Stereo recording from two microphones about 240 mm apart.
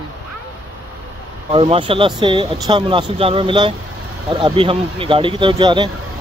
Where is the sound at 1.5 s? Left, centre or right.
Right.